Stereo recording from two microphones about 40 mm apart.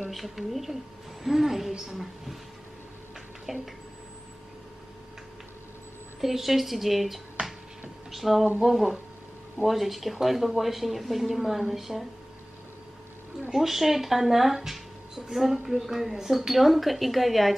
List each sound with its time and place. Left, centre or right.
0.1 s speech: centre
3.5 s speech: centre
6.2 s speech: centre
7.4 s a sound: right
8.1 s speech: centre
13.5 s speech: centre